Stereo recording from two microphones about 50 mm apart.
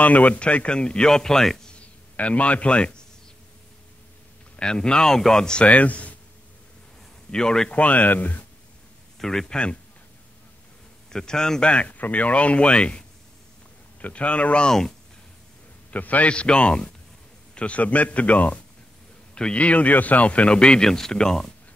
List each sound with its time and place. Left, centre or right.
0.0 s speech: left; by 1.6 s centre
1.8 s a man's voice: left
4.6 s a man's voice: centre
5.7 s speech: left
7.2 s a man's voice: centre
7.7 s speech: left
9.2 s a man's voice: centre
11.1 s a man's voice: centre
11.7 s speech: left
14.0 s speech: left
14.7 s a man's voice: centre
15.9 s speech: left; by 21.5 s centre